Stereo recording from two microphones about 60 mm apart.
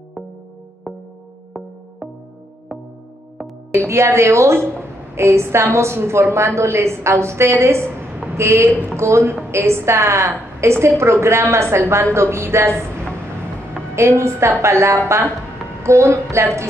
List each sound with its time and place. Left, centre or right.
0.9 s music: centre
3.7 s a woman's voice: right
13.9 s a woman's voice: right